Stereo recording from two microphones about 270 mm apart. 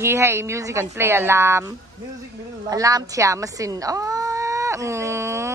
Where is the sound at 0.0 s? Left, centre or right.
Centre.